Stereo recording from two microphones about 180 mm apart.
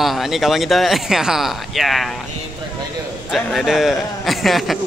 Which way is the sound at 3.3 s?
Centre (ahead or behind).